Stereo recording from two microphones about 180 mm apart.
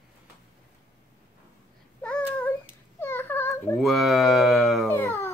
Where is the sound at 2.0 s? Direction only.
10° left (ahead or behind).